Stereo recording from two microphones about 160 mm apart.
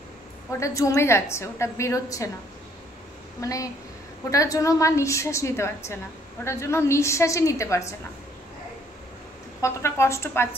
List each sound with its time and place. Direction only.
0.5 s a woman's voice: 20° left (ahead or behind)
3.3 s a woman's voice: 20° left (ahead or behind)
9.6 s a woman's voice: 15° left (ahead or behind)